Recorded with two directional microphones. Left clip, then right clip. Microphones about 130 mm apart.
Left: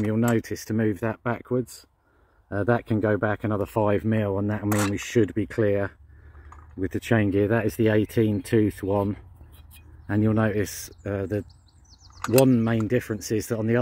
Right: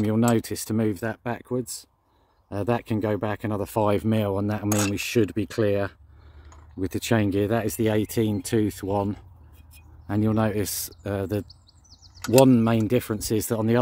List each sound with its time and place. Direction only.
0.2 s speech: 10° right (ahead or behind)
0.9 s speech: 30° left (ahead or behind)
3.1 s speech: 15° left (ahead or behind)
3.7 s speech: 5° right (ahead or behind)
7.2 s speech: 15° left (ahead or behind)
11.0 s speech: 15° right (ahead or behind)
12.3 s speech: 25° right (ahead or behind)